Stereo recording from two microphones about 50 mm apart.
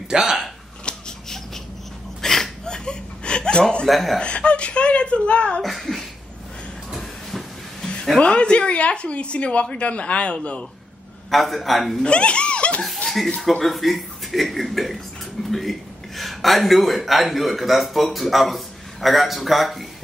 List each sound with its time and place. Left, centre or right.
0.1 s speech: centre
0.8 s a sound: centre
2.2 s chuckle: centre
3.8 s a man's voice: centre
4.2 s a woman's voice: left
5.6 s a man's voice: centre
6.9 s hiss: centre
8.2 s a woman's voice: left
11.2 s a man's voice: centre
12.0 s speech: left
12.8 s a sound: centre
13.4 s a man's voice: centre
15.4 s dishes: centre
16.2 s a man's voice: centre